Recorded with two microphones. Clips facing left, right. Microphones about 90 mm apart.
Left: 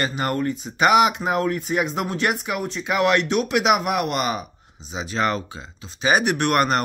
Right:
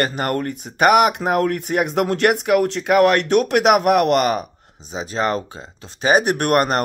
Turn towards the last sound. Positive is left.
turn(degrees=-40)  # may be behind; listen again after turning